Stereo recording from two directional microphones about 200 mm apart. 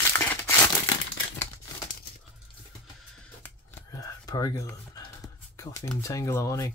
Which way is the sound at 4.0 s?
15° left (ahead or behind).